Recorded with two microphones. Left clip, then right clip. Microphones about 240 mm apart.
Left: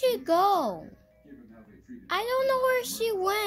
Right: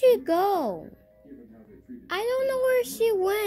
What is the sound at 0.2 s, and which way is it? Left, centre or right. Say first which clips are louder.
Speech: left 1 dB; centre.